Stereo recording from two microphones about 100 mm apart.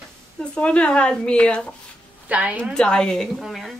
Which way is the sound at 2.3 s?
15° right (ahead or behind).